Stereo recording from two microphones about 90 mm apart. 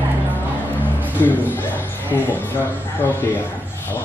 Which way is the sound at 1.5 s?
25° left (ahead or behind).